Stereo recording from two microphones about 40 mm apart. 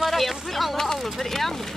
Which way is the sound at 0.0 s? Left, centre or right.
Centre.